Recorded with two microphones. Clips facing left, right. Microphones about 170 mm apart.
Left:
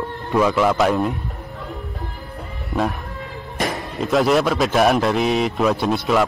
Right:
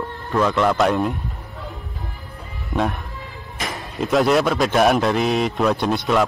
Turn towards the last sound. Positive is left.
turn(degrees=0)  # may be behind; listen again after turning